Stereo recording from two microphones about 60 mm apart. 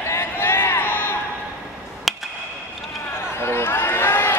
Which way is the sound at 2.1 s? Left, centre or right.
Centre.